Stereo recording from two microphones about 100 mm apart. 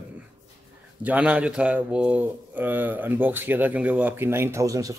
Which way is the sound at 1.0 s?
15° right (ahead or behind).